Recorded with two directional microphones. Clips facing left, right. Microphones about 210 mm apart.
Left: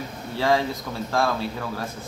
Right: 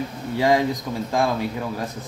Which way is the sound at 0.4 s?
15° right (ahead or behind).